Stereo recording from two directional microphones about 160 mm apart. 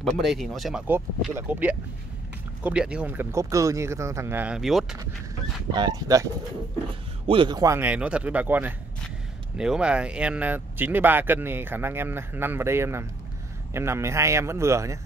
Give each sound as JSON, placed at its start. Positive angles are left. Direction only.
{"t": 0.0, "sound": "speech", "side_deg": 0}
{"t": 1.3, "sound": "speech", "side_deg": -10}
{"t": 4.6, "sound": "speech", "side_deg": 0}
{"t": 5.7, "sound": "speech", "side_deg": -25}
{"t": 7.2, "sound": "speech", "side_deg": -30}